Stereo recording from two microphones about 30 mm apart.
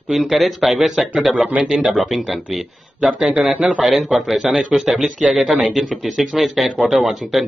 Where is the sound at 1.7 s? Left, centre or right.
Right.